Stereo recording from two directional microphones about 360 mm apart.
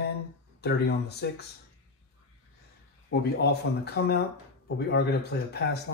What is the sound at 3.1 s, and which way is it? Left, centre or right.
Speech, left.